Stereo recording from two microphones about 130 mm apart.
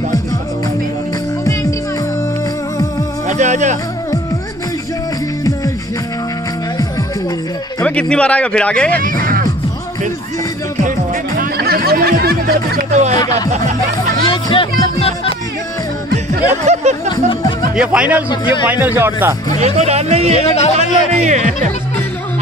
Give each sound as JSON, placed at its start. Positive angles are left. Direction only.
{"t": 3.3, "sound": "music", "side_deg": -65}
{"t": 7.8, "sound": "speech", "side_deg": 10}
{"t": 9.2, "sound": "music", "side_deg": -90}
{"t": 12.9, "sound": "speech", "side_deg": -65}
{"t": 14.2, "sound": "music", "side_deg": 40}
{"t": 16.3, "sound": "speech", "side_deg": -60}
{"t": 17.1, "sound": "music", "side_deg": 35}
{"t": 17.7, "sound": "speech", "side_deg": -10}
{"t": 18.3, "sound": "a man's voice", "side_deg": 35}
{"t": 18.7, "sound": "speech", "side_deg": -15}
{"t": 19.6, "sound": "speech", "side_deg": -55}
{"t": 20.3, "sound": "speech", "side_deg": 55}
{"t": 21.1, "sound": "speech", "side_deg": -60}